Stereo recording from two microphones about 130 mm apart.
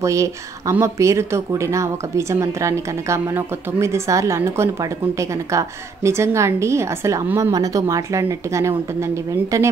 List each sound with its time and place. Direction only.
0.0 s speech: 25° right (ahead or behind)